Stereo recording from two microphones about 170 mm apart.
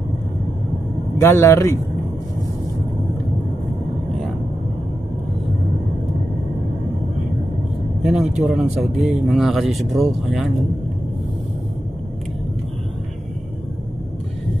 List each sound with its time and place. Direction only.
1.2 s speech: 15° left (ahead or behind)
8.0 s speech: 5° right (ahead or behind)